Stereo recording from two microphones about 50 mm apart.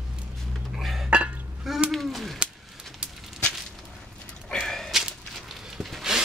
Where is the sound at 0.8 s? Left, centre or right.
Centre.